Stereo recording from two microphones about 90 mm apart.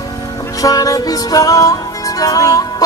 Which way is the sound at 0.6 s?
40° left (ahead or behind).